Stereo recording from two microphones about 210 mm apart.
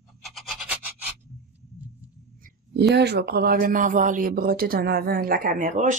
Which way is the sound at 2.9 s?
50° right (ahead or behind).